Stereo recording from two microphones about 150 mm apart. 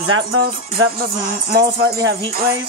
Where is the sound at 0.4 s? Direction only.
90° right.